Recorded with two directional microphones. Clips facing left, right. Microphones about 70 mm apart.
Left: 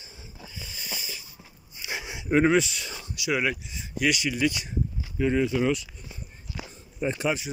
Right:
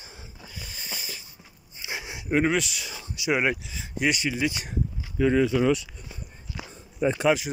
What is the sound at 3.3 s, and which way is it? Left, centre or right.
Speech, right.